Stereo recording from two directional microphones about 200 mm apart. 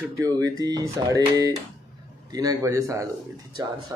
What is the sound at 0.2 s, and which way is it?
Speech, 20° right (ahead or behind).